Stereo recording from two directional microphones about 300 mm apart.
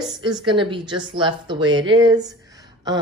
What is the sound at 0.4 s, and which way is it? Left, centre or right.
Speech, centre.